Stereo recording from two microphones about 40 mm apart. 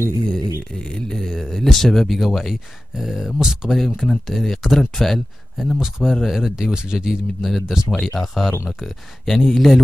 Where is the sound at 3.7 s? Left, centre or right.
Centre.